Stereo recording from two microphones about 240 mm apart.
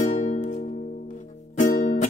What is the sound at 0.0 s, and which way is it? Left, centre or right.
Music, left.